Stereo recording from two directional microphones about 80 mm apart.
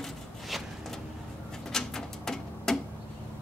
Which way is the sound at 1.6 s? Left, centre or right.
Centre.